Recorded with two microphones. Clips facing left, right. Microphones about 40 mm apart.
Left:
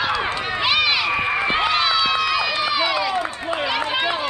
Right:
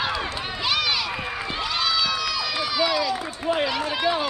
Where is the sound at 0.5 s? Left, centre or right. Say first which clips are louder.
Left 5 dB; left.